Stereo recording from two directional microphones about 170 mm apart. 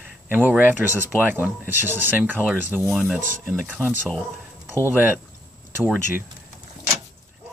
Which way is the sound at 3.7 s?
5° left (ahead or behind).